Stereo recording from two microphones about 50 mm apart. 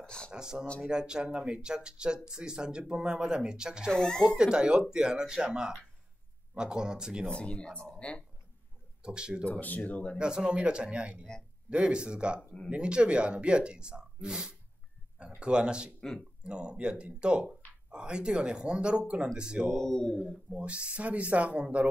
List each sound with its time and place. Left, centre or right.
0.3 s speech: centre
3.9 s speech: centre
4.4 s speech: centre
7.2 s speech: left
9.0 s speech: centre
9.5 s speech: left
10.1 s speech: centre
19.7 s speech: centre
20.6 s speech: right